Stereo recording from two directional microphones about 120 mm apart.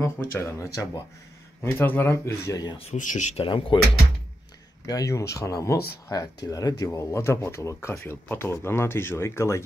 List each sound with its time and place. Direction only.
0.0 s speech: 20° left (ahead or behind)
2.5 s speech: 35° left (ahead or behind)
2.8 s speech: 80° left
3.3 s speech: 45° left (ahead or behind)
4.8 s speech: 30° left (ahead or behind)